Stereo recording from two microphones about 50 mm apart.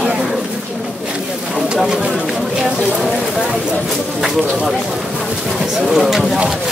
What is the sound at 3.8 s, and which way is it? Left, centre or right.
Speech, centre.